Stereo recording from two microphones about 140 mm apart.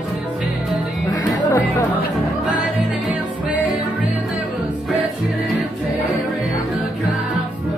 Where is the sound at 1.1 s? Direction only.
25° left (ahead or behind).